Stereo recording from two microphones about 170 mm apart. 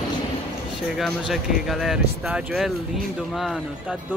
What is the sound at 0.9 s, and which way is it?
Speech, centre (ahead or behind).